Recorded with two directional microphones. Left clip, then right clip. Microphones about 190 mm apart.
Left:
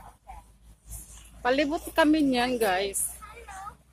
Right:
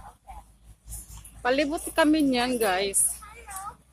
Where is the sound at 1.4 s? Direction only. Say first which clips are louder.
Even; centre (ahead or behind).